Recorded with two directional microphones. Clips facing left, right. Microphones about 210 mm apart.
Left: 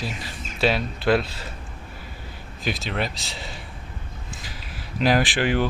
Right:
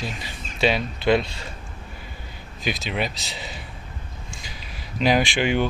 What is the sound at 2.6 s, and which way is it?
Speech, centre (ahead or behind).